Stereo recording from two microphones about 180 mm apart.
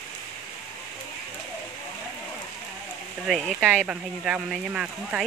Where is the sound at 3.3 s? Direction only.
Centre (ahead or behind).